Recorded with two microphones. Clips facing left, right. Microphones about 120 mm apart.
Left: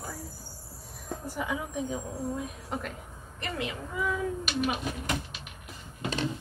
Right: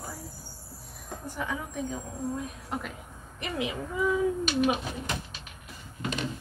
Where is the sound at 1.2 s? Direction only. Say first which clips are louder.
Left 1 dB; 5° left (ahead or behind).